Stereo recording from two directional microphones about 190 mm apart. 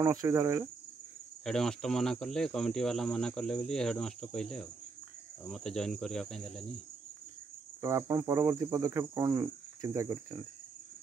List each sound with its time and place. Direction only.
0.0 s cricket: 15° right (ahead or behind)
1.4 s cricket: 5° left (ahead or behind)
7.8 s cricket: 15° right (ahead or behind)